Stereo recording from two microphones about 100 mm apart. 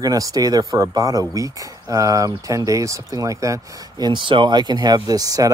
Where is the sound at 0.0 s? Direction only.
40° right (ahead or behind).